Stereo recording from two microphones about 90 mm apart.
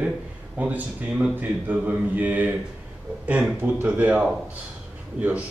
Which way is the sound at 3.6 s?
20° right (ahead or behind).